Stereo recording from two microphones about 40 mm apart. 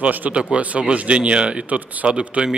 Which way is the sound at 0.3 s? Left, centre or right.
Right.